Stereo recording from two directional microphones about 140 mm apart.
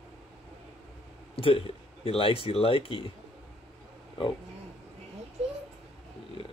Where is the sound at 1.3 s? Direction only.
40° left (ahead or behind).